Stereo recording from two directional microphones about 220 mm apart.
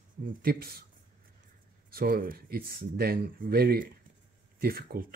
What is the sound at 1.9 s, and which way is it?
Speech, 40° right (ahead or behind).